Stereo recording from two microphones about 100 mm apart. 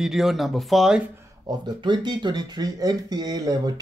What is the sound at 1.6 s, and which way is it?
Speech, 45° right (ahead or behind).